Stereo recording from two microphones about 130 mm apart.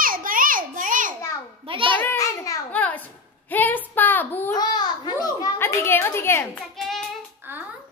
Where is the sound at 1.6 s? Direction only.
40° right (ahead or behind).